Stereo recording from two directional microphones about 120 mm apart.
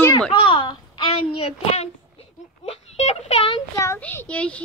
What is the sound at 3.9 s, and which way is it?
Speech, 15° left (ahead or behind).